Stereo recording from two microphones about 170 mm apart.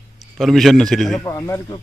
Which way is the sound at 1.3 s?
15° left (ahead or behind).